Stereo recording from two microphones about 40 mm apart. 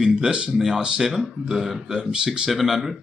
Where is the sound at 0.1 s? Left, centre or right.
Right.